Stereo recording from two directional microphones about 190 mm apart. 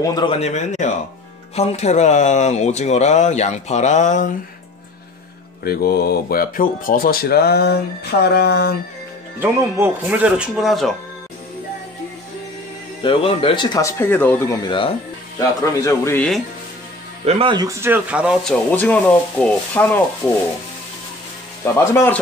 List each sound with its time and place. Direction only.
0.0 s speech: 20° left (ahead or behind)
0.4 s speech: 40° left (ahead or behind)
5.6 s speech: 55° left (ahead or behind)
9.4 s speech: 10° right (ahead or behind)
13.0 s speech: 30° left (ahead or behind); by 16.3 s 15° left (ahead or behind)
17.2 s speech: 30° right (ahead or behind); by 18.4 s 5° right (ahead or behind)
18.5 s speech: 10° left (ahead or behind)
21.7 s speech: 10° left (ahead or behind)